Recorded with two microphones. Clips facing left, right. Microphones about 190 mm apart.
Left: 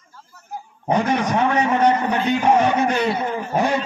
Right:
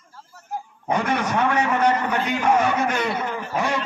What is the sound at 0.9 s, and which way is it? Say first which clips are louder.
A man's voice: left 3 dB; 20° left (ahead or behind).